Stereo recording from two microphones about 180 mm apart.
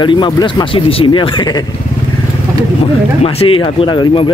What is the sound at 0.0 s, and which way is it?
Speech, 25° left (ahead or behind).